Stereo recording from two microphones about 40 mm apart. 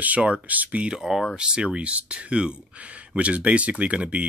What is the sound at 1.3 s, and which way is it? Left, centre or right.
Speech, right.